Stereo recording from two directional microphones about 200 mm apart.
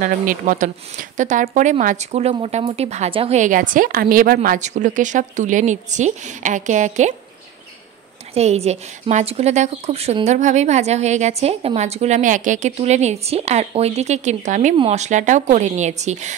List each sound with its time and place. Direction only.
0.0 s speech: 40° right (ahead or behind)
8.4 s speech: 35° right (ahead or behind)